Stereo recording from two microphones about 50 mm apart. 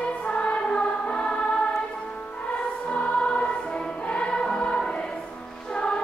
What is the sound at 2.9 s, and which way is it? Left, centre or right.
Music, left.